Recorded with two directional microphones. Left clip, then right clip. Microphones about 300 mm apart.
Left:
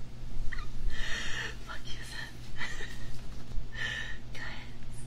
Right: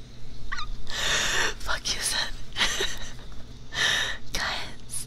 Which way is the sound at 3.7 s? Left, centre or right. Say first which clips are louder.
Right 12 dB; right.